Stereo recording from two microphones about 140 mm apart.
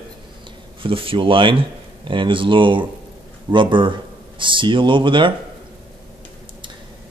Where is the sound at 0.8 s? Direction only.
40° right (ahead or behind).